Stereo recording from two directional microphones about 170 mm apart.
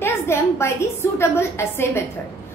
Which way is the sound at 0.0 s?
15° left (ahead or behind).